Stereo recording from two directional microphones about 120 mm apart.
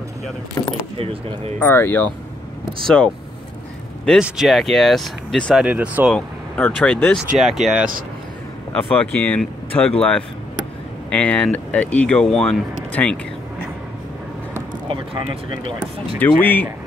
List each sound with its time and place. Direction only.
0.6 s speech: 25° left (ahead or behind)
0.9 s speech: 55° right (ahead or behind)
1.7 s speech: 15° left (ahead or behind)
2.6 s speech: 5° left (ahead or behind)
4.2 s speech: centre (ahead or behind)
5.6 s speech: 10° right (ahead or behind)
6.1 s speech: 10° left (ahead or behind)
7.3 s speech: centre (ahead or behind)
8.9 s speech: 10° left (ahead or behind)
14.9 s speech: 40° right (ahead or behind)
16.2 s speech: 15° left (ahead or behind)